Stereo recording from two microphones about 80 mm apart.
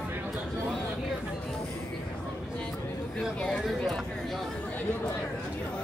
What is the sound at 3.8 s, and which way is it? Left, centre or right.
Chatter, centre.